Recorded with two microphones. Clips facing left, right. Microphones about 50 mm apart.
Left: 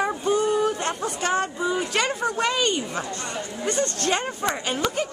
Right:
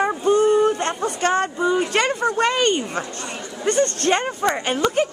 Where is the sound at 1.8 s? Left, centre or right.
Right.